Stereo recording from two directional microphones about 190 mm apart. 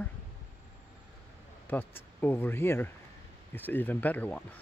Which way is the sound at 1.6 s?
10° left (ahead or behind).